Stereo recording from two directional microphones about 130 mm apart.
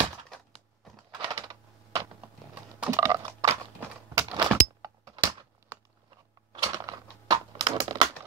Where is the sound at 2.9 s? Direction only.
25° right (ahead or behind).